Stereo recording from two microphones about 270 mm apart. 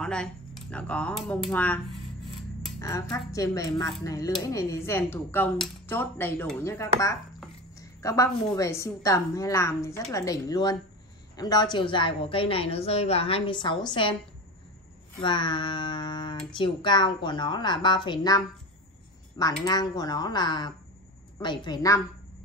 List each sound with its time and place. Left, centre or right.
0.0 s a woman's voice: centre
15.2 s speech: centre
19.6 s speech: centre